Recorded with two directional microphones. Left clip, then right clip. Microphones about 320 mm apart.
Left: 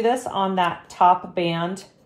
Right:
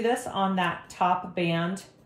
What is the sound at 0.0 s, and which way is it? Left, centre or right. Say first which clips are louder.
Speech: left 5 dB; left.